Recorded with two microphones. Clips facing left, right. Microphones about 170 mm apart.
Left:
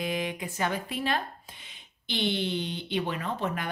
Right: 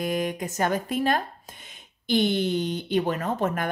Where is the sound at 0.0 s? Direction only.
45° right (ahead or behind).